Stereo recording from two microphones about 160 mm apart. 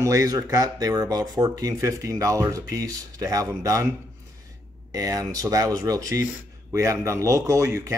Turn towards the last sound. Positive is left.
turn(degrees=-20)  # may be behind; listen again after turning